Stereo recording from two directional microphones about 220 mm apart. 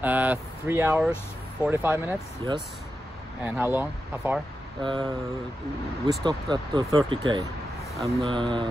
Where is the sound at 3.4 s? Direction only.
10° right (ahead or behind).